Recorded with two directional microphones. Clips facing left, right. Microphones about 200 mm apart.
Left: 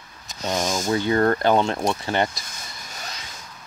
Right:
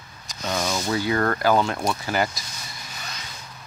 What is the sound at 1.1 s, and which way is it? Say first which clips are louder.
Speech: left 2 dB; 25° left (ahead or behind).